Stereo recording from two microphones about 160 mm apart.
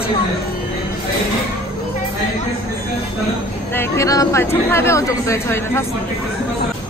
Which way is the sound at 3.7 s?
15° left (ahead or behind).